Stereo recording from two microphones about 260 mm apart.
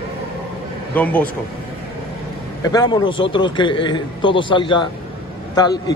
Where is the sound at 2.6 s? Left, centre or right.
Centre.